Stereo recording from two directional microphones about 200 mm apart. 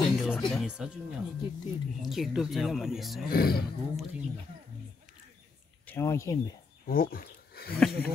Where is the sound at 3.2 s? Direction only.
50° left (ahead or behind).